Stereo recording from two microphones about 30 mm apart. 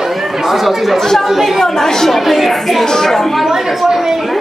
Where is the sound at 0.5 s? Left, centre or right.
Centre.